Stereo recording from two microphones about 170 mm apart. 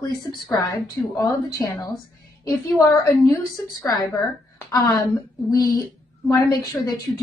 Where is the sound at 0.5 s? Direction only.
20° left (ahead or behind).